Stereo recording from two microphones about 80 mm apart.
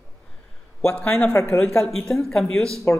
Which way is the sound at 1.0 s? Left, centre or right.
Centre.